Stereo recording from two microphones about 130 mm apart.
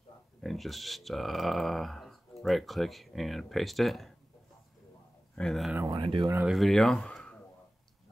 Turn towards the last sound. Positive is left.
turn(degrees=10)  # may be behind; listen again after turning